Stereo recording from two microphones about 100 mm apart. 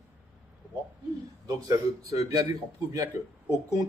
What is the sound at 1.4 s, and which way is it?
Speech, 35° right (ahead or behind).